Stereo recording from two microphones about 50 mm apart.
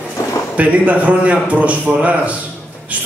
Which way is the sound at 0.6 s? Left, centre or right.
Right.